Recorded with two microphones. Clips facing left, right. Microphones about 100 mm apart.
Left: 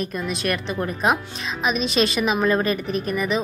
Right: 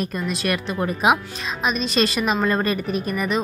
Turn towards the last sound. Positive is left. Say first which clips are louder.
# even
turn(degrees=0)  # may be behind; listen again after turning